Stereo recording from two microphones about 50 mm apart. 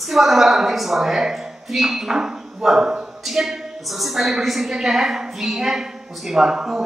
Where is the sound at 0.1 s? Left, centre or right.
Centre.